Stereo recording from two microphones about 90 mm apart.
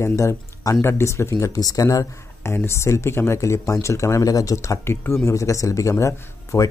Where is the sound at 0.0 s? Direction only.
35° left (ahead or behind).